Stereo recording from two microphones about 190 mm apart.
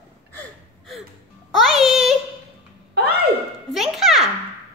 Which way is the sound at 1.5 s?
Centre (ahead or behind).